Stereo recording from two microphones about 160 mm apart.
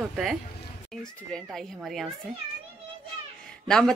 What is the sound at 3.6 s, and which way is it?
Speech, 5° left (ahead or behind).